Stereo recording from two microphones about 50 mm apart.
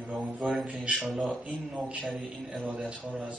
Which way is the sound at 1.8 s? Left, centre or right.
Right.